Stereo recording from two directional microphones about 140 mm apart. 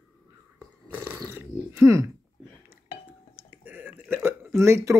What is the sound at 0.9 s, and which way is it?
Roar, 15° right (ahead or behind).